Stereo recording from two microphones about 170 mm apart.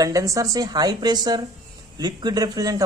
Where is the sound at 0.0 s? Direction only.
20° right (ahead or behind).